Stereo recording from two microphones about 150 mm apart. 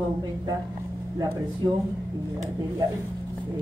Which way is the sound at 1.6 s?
25° right (ahead or behind).